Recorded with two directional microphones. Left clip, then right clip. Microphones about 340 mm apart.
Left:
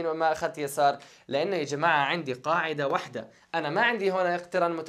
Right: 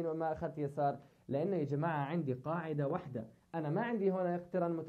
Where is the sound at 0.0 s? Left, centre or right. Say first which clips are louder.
Left 11 dB; centre.